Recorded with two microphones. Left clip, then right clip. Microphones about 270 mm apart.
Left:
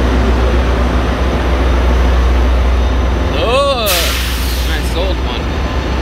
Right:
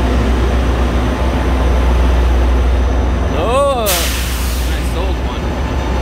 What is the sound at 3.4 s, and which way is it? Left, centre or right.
Vehicle, centre.